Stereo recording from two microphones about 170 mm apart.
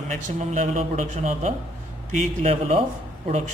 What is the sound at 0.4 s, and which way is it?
A man's voice, 45° right (ahead or behind).